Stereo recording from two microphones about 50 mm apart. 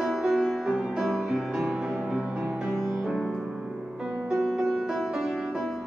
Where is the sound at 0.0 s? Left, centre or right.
Centre.